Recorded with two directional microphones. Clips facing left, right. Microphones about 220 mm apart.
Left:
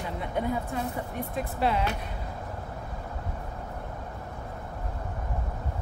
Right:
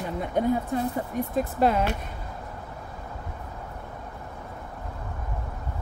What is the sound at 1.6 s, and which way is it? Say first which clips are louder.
Speech: right 4 dB; 45° right (ahead or behind).